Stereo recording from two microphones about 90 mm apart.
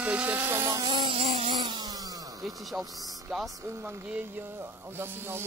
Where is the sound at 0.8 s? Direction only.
75° right (ahead or behind).